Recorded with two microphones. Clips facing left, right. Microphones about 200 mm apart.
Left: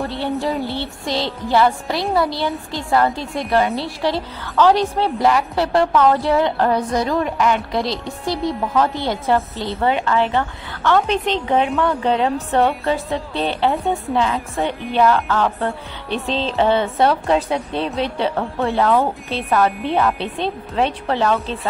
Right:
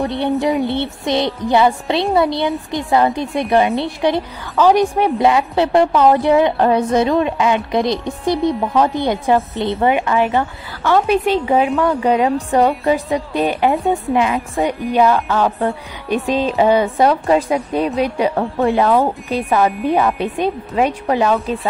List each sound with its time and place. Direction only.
0.0 s a woman's voice: 15° right (ahead or behind); by 12.7 s centre (ahead or behind)
13.3 s a woman's voice: 15° right (ahead or behind)